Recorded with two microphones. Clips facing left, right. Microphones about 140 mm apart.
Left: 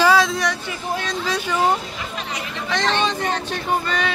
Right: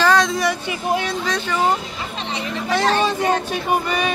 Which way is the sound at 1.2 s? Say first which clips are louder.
Even; 10° left (ahead or behind).